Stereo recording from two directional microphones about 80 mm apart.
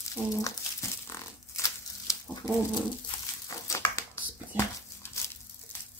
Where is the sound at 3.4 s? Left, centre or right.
Left.